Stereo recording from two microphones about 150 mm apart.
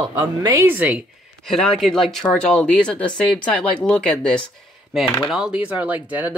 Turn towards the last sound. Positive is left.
turn(degrees=-10)  # may be behind; listen again after turning